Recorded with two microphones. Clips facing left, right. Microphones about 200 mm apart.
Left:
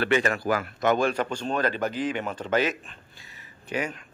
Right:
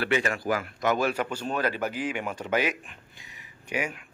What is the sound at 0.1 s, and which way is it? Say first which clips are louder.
Speech: left 3 dB; 45° left (ahead or behind).